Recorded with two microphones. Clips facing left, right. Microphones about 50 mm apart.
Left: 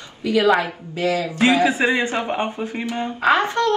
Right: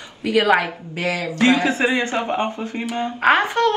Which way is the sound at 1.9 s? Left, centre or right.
Left.